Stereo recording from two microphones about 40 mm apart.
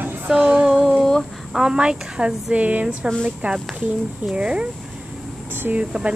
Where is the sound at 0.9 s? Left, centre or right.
Centre.